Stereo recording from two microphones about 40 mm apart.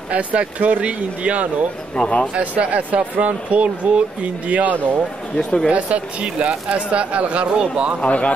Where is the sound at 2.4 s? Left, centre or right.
Right.